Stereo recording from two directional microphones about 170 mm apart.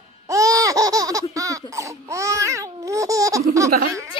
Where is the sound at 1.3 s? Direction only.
20° right (ahead or behind).